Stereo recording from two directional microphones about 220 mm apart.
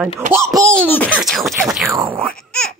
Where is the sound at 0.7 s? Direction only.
5° left (ahead or behind).